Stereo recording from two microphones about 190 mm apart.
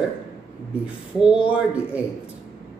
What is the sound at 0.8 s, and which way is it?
Speech, 5° right (ahead or behind).